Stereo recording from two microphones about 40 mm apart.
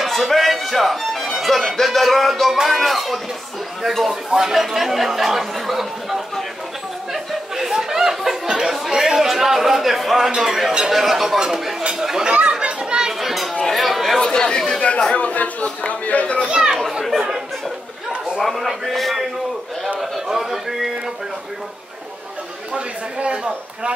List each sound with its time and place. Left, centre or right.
0.0 s music: centre
1.3 s speech: centre
7.1 s chatter: centre
10.9 s speech: centre
12.3 s speech: right
12.5 s children playing: centre
13.2 s children playing: centre
13.7 s speech: centre
14.3 s speech: centre
15.1 s a man's voice: left
16.4 s speech: right
18.4 s speech: centre
20.0 s a sound: centre
22.8 s speech: right